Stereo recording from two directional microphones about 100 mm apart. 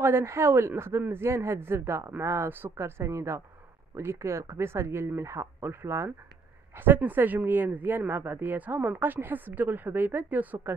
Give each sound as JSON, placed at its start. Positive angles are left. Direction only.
{"t": 0.0, "sound": "speech", "side_deg": -25}